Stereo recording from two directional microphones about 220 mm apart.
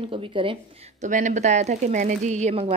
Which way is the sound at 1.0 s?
35° right (ahead or behind).